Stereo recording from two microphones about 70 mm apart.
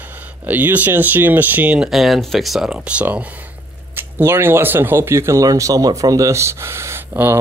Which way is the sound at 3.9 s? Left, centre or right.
Right.